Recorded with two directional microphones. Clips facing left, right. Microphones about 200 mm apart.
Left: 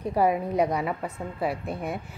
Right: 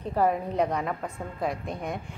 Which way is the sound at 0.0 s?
10° left (ahead or behind).